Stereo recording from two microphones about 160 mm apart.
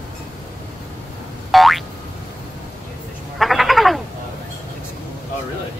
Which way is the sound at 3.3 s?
Centre (ahead or behind).